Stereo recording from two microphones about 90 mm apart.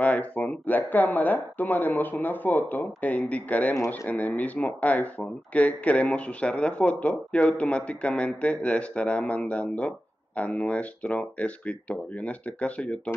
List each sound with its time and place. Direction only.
0.0 s speech: 15° left (ahead or behind)
3.7 s speech: 35° left (ahead or behind)
4.1 s speech: 15° left (ahead or behind)